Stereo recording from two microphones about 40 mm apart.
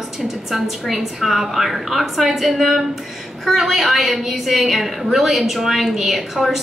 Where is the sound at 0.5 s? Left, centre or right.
Centre.